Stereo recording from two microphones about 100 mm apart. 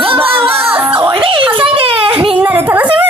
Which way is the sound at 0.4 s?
20° right (ahead or behind).